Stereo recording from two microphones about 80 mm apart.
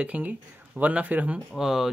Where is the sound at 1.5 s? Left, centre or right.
Centre.